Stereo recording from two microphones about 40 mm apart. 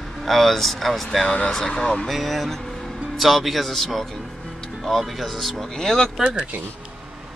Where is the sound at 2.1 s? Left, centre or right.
Centre.